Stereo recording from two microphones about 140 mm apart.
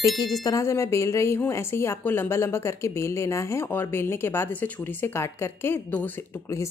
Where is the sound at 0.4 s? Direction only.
25° left (ahead or behind).